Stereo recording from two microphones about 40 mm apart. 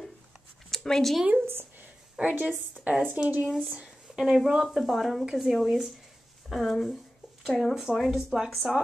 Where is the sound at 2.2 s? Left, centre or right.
Right.